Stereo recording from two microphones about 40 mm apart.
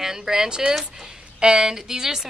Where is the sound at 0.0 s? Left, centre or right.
Centre.